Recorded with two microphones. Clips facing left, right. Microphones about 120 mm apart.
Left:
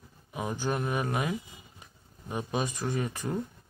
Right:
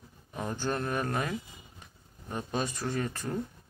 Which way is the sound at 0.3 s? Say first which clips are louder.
Left 1 dB; 10° left (ahead or behind).